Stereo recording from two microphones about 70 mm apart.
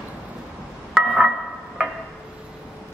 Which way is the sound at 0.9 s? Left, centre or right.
Centre.